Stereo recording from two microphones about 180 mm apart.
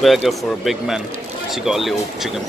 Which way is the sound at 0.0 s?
Centre (ahead or behind).